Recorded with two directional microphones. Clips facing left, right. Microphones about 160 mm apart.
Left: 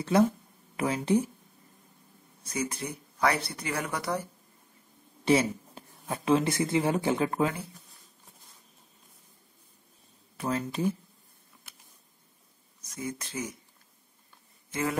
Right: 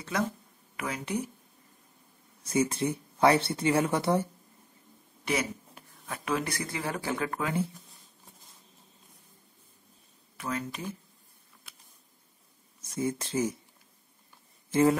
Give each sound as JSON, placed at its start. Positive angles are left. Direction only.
{"t": 0.7, "sound": "speech", "side_deg": 30}
{"t": 2.5, "sound": "speech", "side_deg": -25}
{"t": 5.2, "sound": "speech", "side_deg": 30}
{"t": 10.4, "sound": "speech", "side_deg": 35}
{"t": 12.8, "sound": "speech", "side_deg": -30}
{"t": 14.7, "sound": "speech", "side_deg": -30}